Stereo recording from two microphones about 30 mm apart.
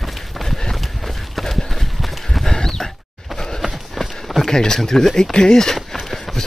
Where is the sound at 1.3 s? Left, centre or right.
Centre.